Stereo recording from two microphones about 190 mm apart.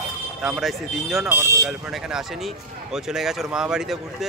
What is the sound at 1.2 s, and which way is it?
Speech, 15° right (ahead or behind).